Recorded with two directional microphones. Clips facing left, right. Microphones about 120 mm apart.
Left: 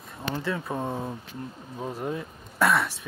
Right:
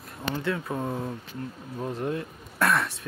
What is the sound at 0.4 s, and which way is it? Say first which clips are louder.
Speech: right 1 dB; centre (ahead or behind).